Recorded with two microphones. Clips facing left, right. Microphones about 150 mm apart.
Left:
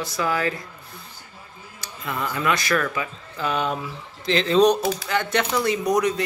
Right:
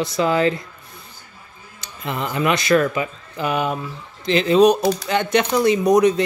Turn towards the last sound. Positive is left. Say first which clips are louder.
# right 6 dB
turn(degrees=-20)  # may be behind; listen again after turning